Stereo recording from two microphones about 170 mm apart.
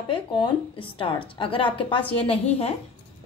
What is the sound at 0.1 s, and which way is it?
A woman's voice, 30° left (ahead or behind).